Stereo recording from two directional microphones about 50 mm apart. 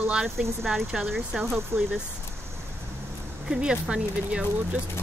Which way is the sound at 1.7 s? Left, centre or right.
Right.